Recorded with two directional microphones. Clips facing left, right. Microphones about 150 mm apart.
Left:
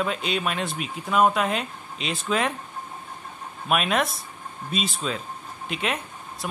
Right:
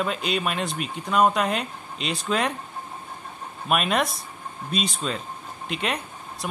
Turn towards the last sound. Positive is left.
turn(degrees=0)  # may be behind; listen again after turning